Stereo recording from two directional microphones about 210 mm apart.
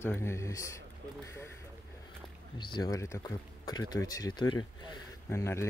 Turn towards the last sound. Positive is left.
turn(degrees=10)  # may be behind; listen again after turning